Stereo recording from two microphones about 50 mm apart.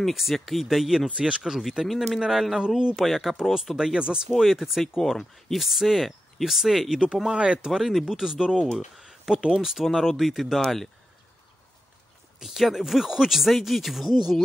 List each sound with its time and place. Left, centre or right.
0.0 s speech: centre
1.0 s speech: centre
3.7 s speech: centre
4.3 s speech: centre
7.2 s speech: centre
12.4 s speech: centre